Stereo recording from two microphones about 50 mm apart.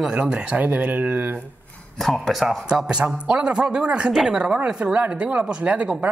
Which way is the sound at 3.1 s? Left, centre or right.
Centre.